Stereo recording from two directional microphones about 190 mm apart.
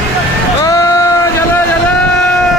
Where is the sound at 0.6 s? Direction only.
15° left (ahead or behind).